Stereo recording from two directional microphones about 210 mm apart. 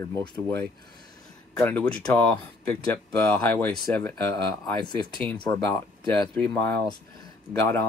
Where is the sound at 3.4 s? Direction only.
10° left (ahead or behind).